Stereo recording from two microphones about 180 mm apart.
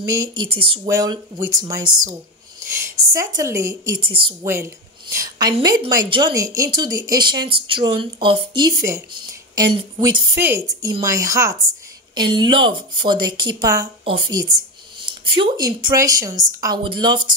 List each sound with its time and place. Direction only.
0.0 s speech: 20° right (ahead or behind)
4.5 s a woman's voice: 15° right (ahead or behind)
10.3 s a woman's voice: 15° right (ahead or behind)